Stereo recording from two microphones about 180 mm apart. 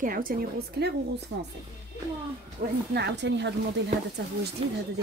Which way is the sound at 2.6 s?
65° right (ahead or behind).